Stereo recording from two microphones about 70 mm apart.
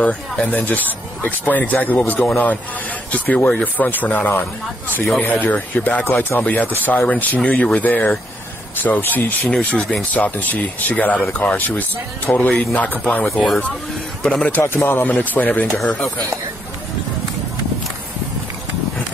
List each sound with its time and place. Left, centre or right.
0.0 s speech: centre
10.2 s speech: left
14.2 s speech: centre
14.8 s speech: left
15.0 s speech: left
15.8 s speech: centre